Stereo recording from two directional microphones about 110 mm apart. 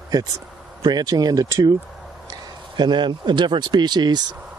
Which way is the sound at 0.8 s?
35° right (ahead or behind).